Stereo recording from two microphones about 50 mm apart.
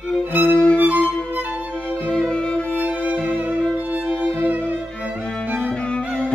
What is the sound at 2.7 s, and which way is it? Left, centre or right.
Music, right.